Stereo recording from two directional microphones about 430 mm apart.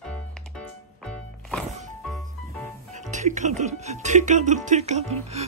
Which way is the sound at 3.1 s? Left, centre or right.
Centre.